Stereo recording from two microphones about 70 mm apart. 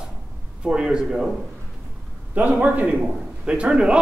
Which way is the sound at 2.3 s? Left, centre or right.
Right.